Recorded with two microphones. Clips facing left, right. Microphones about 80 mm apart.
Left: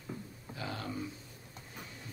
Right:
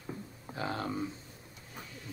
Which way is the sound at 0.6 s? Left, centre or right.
Right.